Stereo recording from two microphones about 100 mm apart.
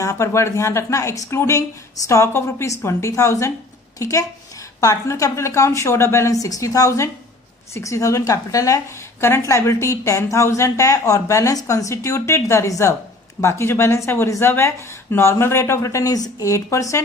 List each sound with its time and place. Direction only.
0.0 s a woman's voice: 30° left (ahead or behind)